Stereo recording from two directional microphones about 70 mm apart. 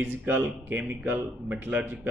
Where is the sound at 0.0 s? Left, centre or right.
Right.